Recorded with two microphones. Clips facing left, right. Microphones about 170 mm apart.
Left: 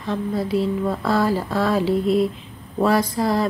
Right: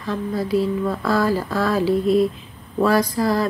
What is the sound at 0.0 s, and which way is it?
Speech, 25° left (ahead or behind).